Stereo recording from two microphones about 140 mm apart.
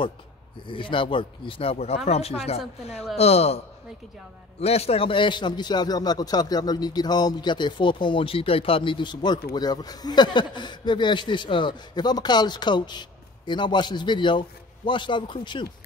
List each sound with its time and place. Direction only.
0.7 s a man's voice: 35° left (ahead or behind)